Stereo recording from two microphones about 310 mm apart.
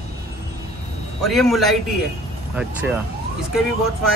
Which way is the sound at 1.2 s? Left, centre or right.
Centre.